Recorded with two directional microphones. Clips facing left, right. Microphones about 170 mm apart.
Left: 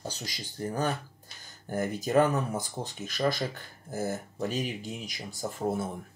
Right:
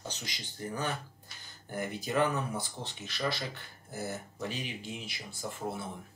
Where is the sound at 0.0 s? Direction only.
40° left (ahead or behind).